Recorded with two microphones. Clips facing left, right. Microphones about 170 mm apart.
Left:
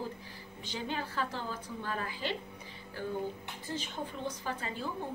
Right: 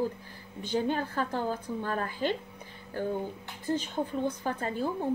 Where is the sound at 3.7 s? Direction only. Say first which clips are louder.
Right 9 dB; 50° right (ahead or behind).